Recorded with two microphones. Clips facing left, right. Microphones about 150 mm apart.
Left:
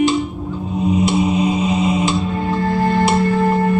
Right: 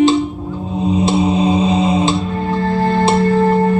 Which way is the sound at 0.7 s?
30° right (ahead or behind).